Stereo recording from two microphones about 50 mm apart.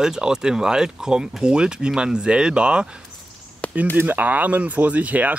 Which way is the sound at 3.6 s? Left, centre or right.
Left.